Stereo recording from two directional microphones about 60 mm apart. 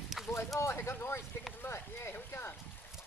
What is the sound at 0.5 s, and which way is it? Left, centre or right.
Speech, left.